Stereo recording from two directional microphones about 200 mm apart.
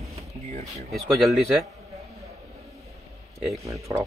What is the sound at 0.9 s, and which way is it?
Speech, centre (ahead or behind).